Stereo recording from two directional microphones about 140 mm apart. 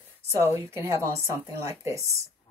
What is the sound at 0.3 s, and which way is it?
A woman's voice, 20° right (ahead or behind).